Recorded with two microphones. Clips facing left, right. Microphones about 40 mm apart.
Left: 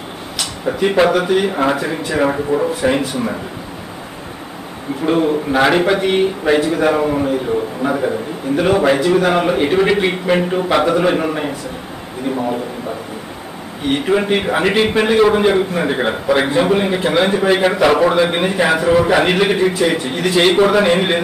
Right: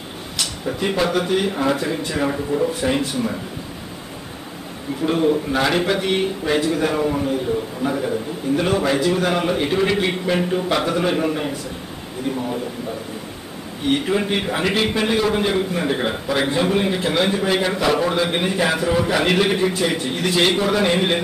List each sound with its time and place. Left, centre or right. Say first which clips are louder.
0.7 s a man's voice: left 8 dB; centre
1.7 s a man's voice: left 3 dB; centre
5.0 s a man's voice: left 3 dB; centre
13.8 s a man's voice: left 4 dB; centre
20.5 s a man's voice: left 6 dB; left